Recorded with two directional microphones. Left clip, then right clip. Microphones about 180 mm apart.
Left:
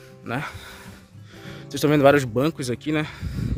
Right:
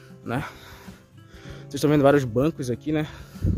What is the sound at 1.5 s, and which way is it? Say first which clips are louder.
Speech: left 1 dB; 10° right (ahead or behind).